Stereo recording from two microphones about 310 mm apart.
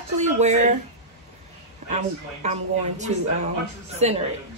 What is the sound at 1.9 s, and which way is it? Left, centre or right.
A woman's voice, right.